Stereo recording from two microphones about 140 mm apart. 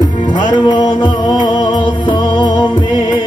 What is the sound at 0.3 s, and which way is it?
Music, 65° left (ahead or behind).